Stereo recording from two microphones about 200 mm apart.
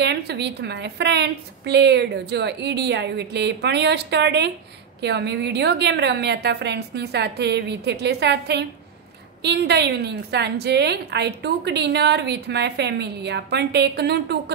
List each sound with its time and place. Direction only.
0.0 s a woman's voice: 55° right (ahead or behind)